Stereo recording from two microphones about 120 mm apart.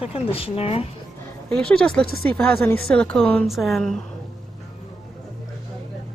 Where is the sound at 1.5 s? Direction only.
10° left (ahead or behind).